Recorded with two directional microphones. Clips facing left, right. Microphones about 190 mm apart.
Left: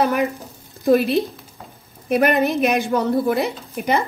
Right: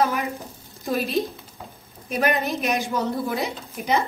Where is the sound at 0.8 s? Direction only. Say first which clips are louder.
Left 8 dB; 65° left (ahead or behind).